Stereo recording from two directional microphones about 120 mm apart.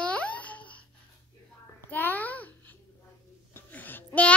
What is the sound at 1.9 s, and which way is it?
Babbling, 15° left (ahead or behind).